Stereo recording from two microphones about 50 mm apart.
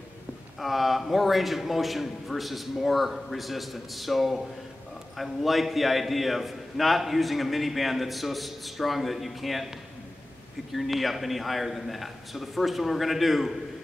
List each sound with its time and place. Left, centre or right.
0.6 s a man's voice: centre
10.7 s a man's voice: centre